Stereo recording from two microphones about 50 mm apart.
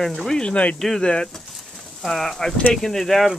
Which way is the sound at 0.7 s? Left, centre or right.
Centre.